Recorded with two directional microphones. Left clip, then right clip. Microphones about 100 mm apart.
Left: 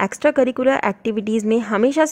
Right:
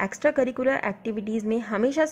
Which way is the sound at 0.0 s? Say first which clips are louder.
Left 6 dB; 40° left (ahead or behind).